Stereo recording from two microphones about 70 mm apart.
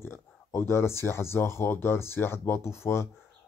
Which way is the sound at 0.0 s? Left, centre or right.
Left.